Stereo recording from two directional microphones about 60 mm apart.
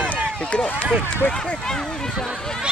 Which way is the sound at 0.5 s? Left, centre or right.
Centre.